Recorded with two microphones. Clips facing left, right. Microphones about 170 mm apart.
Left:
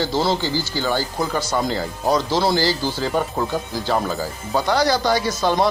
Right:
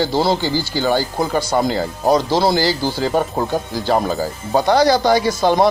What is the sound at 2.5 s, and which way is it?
Speech, 15° right (ahead or behind).